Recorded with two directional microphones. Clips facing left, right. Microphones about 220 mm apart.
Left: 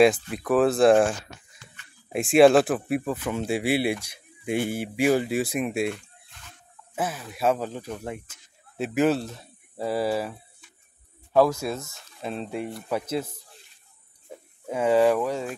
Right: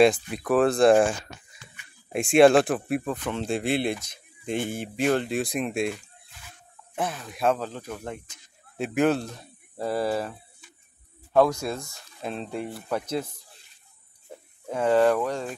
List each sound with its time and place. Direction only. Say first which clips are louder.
0.3 s speech: even; centre (ahead or behind)
1.8 s a sound: even; 10° right (ahead or behind)
2.1 s speech: left 1 dB; centre (ahead or behind)
14.7 s speech: left 1 dB; 5° left (ahead or behind)